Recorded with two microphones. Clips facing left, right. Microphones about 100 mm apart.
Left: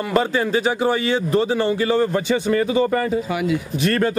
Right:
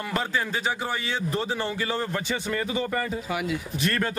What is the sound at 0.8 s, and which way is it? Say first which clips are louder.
Speech: left 10 dB; 90° left.